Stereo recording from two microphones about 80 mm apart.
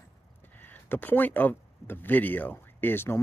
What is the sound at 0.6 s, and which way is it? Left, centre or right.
Speech, left.